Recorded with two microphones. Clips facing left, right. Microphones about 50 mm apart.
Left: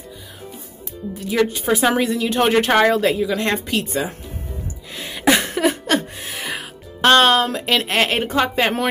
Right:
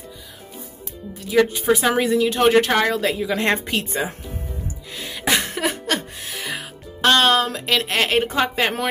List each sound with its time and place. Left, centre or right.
1.3 s a woman's voice: centre
2.3 s speech: centre
3.0 s a woman's voice: centre
3.3 s a woman's voice: right
4.9 s a sound: centre
6.2 s speech: centre